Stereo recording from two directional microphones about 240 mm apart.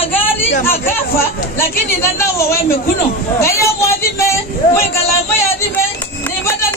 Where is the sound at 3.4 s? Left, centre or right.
Centre.